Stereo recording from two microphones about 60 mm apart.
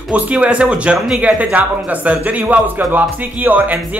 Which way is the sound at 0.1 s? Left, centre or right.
Right.